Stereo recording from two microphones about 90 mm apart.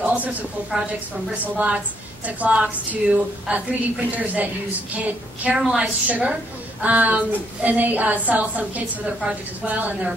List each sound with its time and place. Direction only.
0.0 s a sound: 15° right (ahead or behind)
1.4 s a woman's voice: 15° right (ahead or behind)
5.6 s a woman's voice: 5° right (ahead or behind)
6.0 s a woman's voice: 15° right (ahead or behind)